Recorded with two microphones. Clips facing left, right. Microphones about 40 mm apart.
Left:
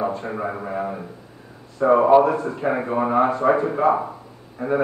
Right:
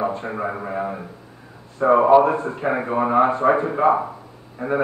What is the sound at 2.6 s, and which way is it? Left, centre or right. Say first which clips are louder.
Speech: right 1 dB; centre.